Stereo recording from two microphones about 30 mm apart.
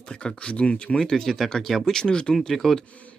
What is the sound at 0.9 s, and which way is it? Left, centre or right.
Speech, centre.